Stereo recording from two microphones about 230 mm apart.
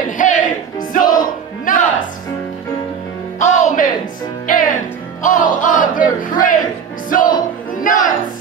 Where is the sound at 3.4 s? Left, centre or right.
Left.